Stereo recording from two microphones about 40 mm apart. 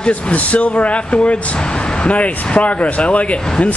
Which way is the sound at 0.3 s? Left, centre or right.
Left.